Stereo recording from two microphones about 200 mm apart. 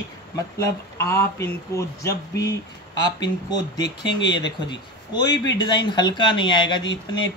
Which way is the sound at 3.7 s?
20° left (ahead or behind).